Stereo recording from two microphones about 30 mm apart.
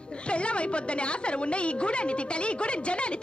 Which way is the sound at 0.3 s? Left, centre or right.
Left.